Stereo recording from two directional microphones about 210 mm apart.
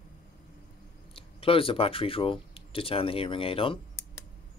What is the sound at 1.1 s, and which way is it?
Speech, 25° left (ahead or behind).